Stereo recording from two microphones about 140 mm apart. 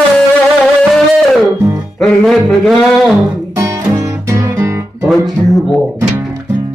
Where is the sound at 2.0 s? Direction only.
Centre (ahead or behind).